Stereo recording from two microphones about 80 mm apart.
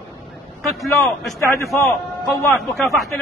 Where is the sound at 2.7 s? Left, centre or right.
Centre.